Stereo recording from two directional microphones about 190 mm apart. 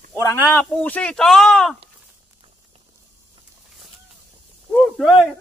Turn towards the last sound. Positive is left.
turn(degrees=0)  # may be behind; listen again after turning